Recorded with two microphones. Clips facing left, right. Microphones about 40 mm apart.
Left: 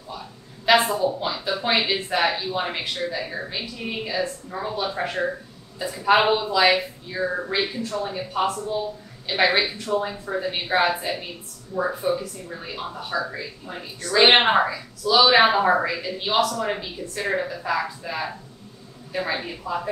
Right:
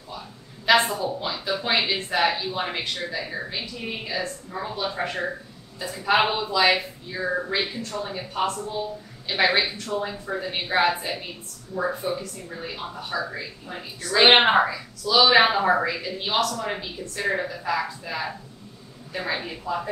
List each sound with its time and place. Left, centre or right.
0.7 s speech: centre